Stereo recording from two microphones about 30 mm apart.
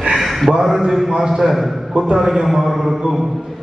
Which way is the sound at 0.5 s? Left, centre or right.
Centre.